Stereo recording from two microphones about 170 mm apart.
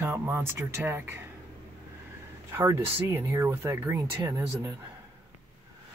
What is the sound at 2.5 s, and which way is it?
Speech, 15° right (ahead or behind).